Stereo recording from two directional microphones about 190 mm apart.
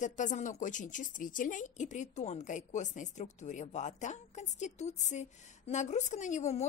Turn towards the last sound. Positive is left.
turn(degrees=35)  # may be behind; listen again after turning